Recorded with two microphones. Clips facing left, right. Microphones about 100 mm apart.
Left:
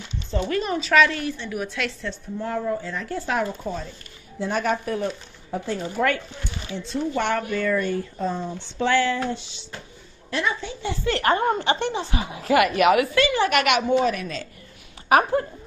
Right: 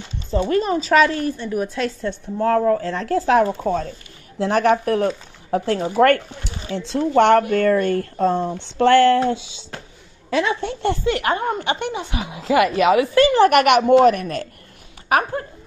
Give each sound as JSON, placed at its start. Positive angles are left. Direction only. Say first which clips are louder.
{"t": 0.3, "sound": "a woman's voice", "louder": "right 6 dB", "side_deg": -40}
{"t": 2.3, "sound": "speech", "louder": "right 9 dB", "side_deg": -70}
{"t": 3.6, "sound": "speech", "louder": "right 9 dB", "side_deg": -60}
{"t": 4.4, "sound": "speech", "louder": "right 7 dB", "side_deg": -70}
{"t": 6.9, "sound": "speech", "louder": "right 10 dB", "side_deg": -80}
{"t": 10.4, "sound": "speech", "louder": "right 4 dB", "side_deg": -70}
{"t": 11.1, "sound": "speech", "louder": "left 3 dB", "side_deg": -10}
{"t": 13.2, "sound": "a woman's voice", "louder": "right 7 dB", "side_deg": -45}